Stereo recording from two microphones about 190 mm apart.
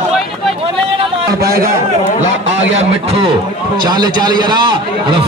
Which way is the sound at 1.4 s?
55° right (ahead or behind).